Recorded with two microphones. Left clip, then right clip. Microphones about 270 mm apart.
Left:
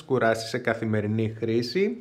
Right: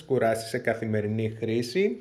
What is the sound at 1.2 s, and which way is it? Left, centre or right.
Speech, centre.